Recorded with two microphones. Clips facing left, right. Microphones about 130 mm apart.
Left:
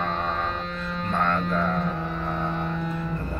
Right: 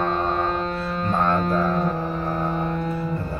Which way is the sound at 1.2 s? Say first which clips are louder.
Right 3 dB; 35° right (ahead or behind).